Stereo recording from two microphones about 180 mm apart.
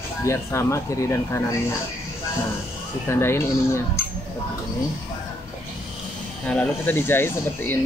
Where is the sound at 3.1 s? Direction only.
15° left (ahead or behind).